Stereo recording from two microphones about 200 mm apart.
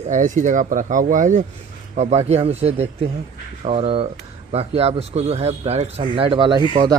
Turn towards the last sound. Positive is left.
turn(degrees=-20)  # may be behind; listen again after turning